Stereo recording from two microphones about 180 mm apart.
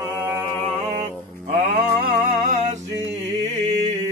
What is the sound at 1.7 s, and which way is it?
Music, 55° right (ahead or behind).